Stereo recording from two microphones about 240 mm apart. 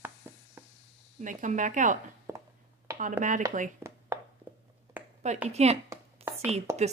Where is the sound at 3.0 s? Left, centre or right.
Right.